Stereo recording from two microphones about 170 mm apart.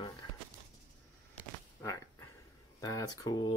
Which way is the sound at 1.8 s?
15° left (ahead or behind).